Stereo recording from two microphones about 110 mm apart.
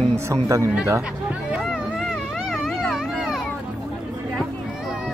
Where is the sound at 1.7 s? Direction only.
Centre (ahead or behind).